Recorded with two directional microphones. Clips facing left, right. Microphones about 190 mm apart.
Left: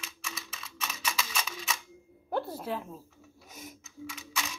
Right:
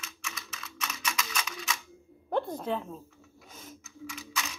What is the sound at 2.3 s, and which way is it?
Speech, 5° left (ahead or behind).